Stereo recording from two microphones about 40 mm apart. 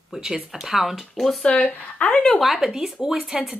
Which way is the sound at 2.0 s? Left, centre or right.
Left.